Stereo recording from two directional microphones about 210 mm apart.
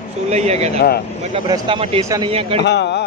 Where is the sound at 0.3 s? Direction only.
30° right (ahead or behind).